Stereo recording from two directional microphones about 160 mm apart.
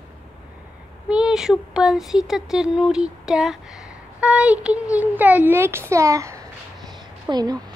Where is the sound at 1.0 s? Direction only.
5° right (ahead or behind).